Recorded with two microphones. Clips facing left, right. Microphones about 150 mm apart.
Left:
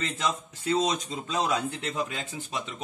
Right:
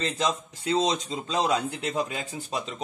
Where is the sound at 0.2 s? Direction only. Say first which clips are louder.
Right 3 dB; 30° right (ahead or behind).